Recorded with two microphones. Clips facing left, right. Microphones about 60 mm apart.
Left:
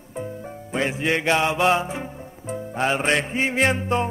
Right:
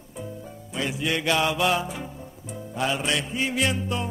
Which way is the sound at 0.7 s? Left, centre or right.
Left.